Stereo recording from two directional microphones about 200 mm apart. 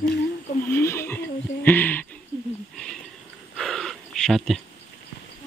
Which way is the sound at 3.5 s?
Centre (ahead or behind).